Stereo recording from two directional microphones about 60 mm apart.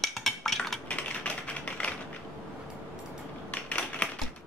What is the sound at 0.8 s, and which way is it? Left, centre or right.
Typing, left.